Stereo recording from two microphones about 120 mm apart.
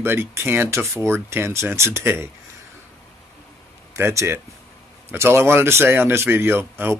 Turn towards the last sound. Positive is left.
turn(degrees=-20)  # may be behind; listen again after turning